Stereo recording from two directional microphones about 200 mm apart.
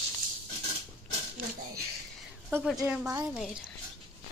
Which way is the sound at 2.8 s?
15° right (ahead or behind).